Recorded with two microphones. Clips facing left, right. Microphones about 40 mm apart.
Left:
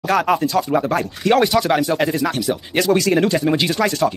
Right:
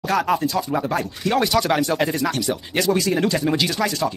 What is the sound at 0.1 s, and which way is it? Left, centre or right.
Speech, centre.